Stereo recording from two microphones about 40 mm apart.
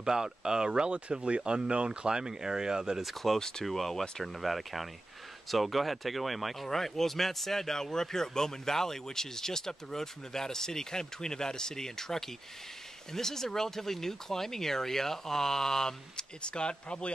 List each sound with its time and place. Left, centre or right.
0.0 s speech: centre
3.0 s speech: centre
3.3 s speech: centre